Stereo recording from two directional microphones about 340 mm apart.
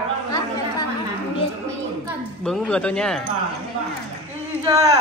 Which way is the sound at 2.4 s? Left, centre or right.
Centre.